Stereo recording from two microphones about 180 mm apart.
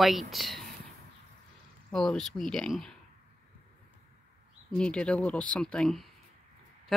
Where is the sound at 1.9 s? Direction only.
Centre (ahead or behind).